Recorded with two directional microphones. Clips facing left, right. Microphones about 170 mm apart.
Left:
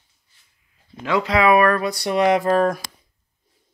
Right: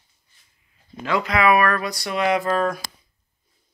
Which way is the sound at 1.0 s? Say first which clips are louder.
Left 2 dB; 20° left (ahead or behind).